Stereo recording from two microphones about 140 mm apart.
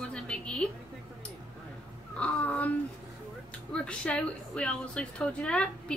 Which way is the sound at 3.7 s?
5° left (ahead or behind).